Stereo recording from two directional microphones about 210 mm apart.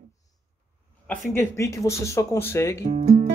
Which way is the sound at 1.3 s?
10° left (ahead or behind).